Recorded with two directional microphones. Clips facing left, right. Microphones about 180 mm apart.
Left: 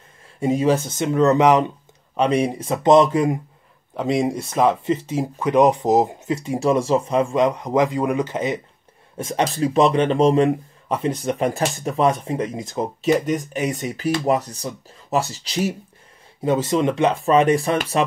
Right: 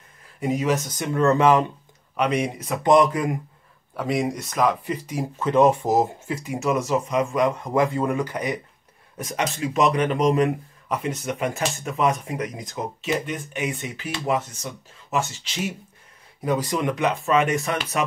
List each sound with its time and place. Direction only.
0.4 s speech: 30° left (ahead or behind)
2.1 s speech: 30° left (ahead or behind)
13.0 s speech: 40° left (ahead or behind)
16.4 s speech: 25° left (ahead or behind)